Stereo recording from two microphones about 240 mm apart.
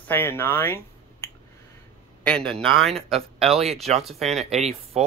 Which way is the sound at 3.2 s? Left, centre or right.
Right.